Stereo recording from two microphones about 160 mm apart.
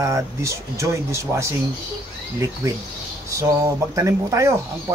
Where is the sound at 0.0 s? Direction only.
20° right (ahead or behind).